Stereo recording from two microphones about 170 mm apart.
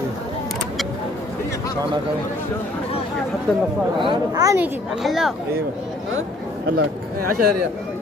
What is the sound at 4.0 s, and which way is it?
Speech, 25° right (ahead or behind).